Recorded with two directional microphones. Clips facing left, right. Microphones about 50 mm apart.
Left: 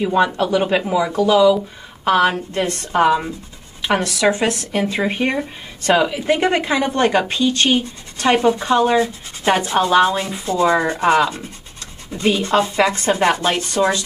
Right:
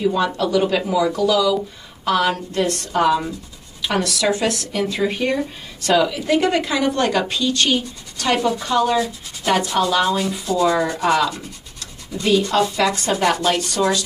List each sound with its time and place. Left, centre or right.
0.0 s a woman's voice: left